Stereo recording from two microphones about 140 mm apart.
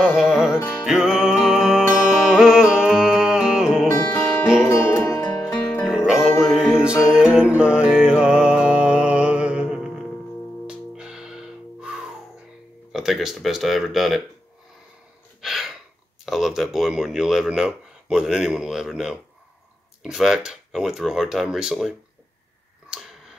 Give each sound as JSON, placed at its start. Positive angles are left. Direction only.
{"t": 0.0, "sound": "music", "side_deg": -5}
{"t": 0.6, "sound": "music", "side_deg": 15}
{"t": 0.8, "sound": "music", "side_deg": -5}
{"t": 3.8, "sound": "music", "side_deg": 20}
{"t": 5.9, "sound": "music", "side_deg": -5}
{"t": 12.9, "sound": "speech", "side_deg": 0}
{"t": 15.4, "sound": "gasp", "side_deg": 0}
{"t": 16.3, "sound": "speech", "side_deg": 0}